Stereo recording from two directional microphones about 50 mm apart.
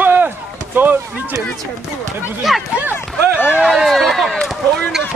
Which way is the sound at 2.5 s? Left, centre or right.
Centre.